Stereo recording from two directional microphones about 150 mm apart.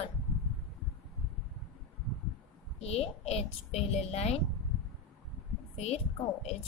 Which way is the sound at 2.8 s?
45° left (ahead or behind).